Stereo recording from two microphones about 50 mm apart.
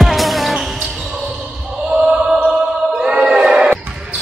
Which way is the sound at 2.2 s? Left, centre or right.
Centre.